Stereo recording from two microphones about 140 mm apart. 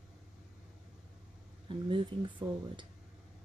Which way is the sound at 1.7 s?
35° right (ahead or behind).